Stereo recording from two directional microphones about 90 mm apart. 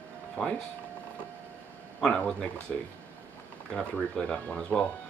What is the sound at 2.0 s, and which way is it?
Speech, 10° left (ahead or behind).